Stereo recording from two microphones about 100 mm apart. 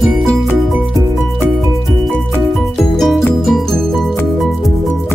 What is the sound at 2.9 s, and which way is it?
Music, 5° left (ahead or behind).